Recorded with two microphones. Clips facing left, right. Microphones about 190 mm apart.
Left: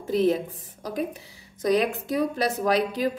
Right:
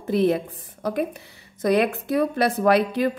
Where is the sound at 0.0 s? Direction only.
60° right (ahead or behind).